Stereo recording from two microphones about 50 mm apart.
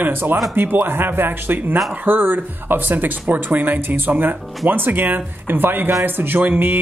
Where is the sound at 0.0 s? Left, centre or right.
Right.